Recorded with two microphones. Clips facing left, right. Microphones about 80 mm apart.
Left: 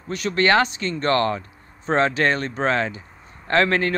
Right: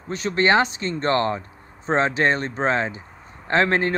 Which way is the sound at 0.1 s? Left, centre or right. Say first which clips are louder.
Even; right.